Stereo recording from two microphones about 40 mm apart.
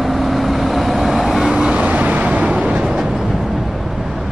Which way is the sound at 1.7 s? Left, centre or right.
Right.